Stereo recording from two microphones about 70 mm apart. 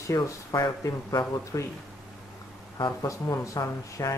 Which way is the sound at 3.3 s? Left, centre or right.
Left.